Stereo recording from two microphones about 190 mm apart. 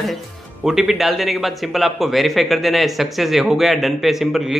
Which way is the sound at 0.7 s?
Centre (ahead or behind).